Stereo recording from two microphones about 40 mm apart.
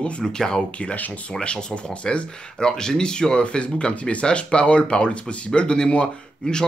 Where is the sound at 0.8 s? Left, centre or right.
Left.